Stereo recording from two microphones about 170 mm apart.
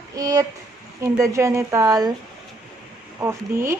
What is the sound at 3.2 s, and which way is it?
Speech, 15° right (ahead or behind).